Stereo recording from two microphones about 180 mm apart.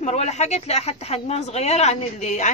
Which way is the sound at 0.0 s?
40° left (ahead or behind).